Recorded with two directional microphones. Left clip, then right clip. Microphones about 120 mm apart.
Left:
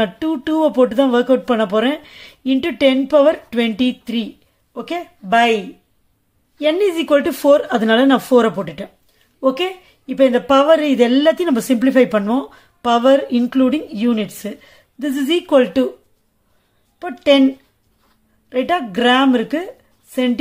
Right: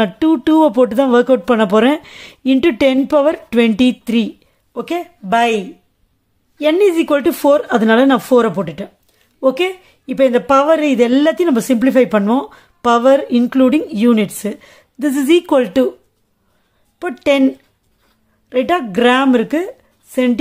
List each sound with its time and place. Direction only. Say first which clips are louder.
0.0 s a woman's voice: right 5 dB; 45° right (ahead or behind)
11.1 s a woman's voice: even; 45° right (ahead or behind)
11.3 s a woman's voice: right 3 dB; 25° right (ahead or behind); by 15.9 s 45° right (ahead or behind)
17.0 s a woman's voice: even; 50° right (ahead or behind)
18.5 s speech: right 3 dB; 40° right (ahead or behind)